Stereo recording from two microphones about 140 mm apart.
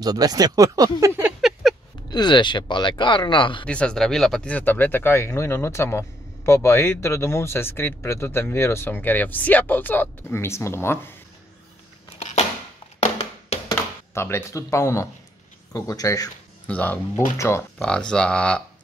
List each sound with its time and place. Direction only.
0.0 s speech: 30° right (ahead or behind)
1.4 s a sound: centre (ahead or behind)
2.0 s speech: 30° left (ahead or behind)
3.6 s speech: 5° left (ahead or behind)
13.7 s speech: 20° left (ahead or behind)
16.6 s speech: 10° left (ahead or behind)
17.7 s speech: 5° left (ahead or behind)